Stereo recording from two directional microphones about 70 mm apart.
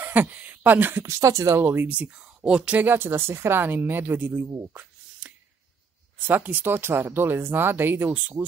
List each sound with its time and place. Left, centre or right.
0.0 s speech: right
1.0 s speech: right
1.6 s speech: right
2.0 s speech: centre
5.2 s a sound: centre
6.1 s speech: right